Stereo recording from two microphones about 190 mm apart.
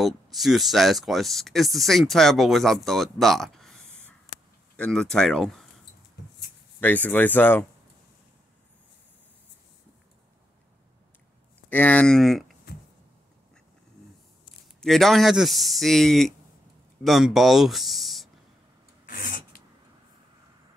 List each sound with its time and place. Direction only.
0.0 s speech: centre (ahead or behind)
6.8 s speech: 10° left (ahead or behind)
11.7 s speech: 5° left (ahead or behind)
14.8 s speech: centre (ahead or behind)
19.0 s filing: 50° left (ahead or behind)